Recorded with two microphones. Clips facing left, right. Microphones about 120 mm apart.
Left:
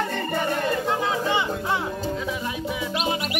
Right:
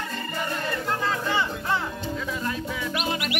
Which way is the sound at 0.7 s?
15° left (ahead or behind).